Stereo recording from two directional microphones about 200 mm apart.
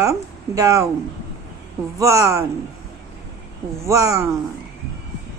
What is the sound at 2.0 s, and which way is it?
Speech, 15° right (ahead or behind).